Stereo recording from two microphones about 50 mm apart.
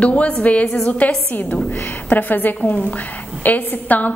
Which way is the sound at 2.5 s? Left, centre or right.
Left.